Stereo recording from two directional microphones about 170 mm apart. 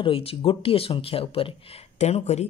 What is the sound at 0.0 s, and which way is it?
Speech, 35° left (ahead or behind).